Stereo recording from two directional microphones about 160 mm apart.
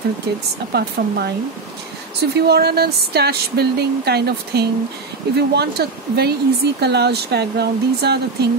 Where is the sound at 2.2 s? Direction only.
90° right.